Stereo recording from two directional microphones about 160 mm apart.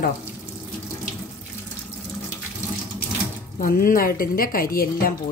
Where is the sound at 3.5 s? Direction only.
60° left (ahead or behind).